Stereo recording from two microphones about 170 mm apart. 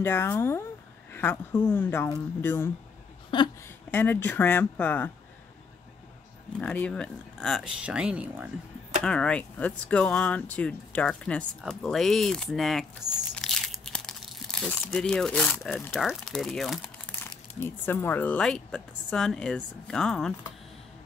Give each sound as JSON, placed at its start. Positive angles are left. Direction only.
{"t": 0.0, "sound": "speech", "side_deg": 15}
{"t": 3.3, "sound": "speech", "side_deg": 30}
{"t": 3.6, "sound": "speech", "side_deg": 10}
{"t": 6.6, "sound": "speech", "side_deg": 10}
{"t": 9.0, "sound": "speech", "side_deg": 5}
{"t": 13.3, "sound": "crumpling", "side_deg": 5}
{"t": 15.6, "sound": "speech", "side_deg": 0}
{"t": 17.2, "sound": "speech", "side_deg": 15}